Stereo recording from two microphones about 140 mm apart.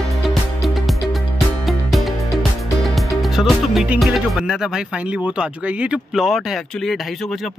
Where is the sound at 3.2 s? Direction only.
Centre (ahead or behind).